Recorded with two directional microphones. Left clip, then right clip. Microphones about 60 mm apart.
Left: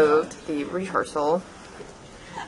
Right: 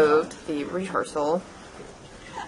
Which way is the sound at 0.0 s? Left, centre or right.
Centre.